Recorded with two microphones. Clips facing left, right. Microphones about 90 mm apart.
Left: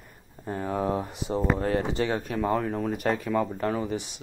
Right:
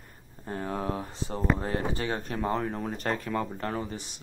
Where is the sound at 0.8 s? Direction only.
20° left (ahead or behind).